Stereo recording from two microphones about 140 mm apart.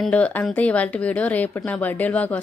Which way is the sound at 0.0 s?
10° left (ahead or behind).